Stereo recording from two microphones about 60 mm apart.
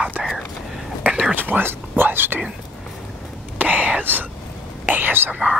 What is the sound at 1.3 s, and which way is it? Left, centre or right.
Speech, right.